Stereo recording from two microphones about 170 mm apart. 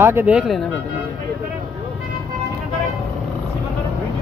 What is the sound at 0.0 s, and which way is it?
Speech, 10° right (ahead or behind).